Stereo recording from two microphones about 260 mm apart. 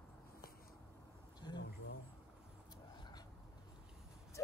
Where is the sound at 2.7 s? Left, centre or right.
Centre.